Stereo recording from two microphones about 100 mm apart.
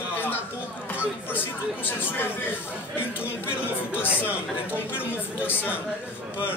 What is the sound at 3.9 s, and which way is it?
Speech, 15° right (ahead or behind).